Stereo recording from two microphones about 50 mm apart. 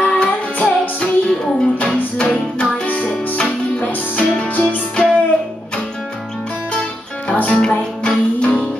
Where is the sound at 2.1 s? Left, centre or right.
Left.